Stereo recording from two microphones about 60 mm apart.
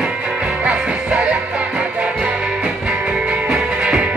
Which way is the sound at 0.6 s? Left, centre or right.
Right.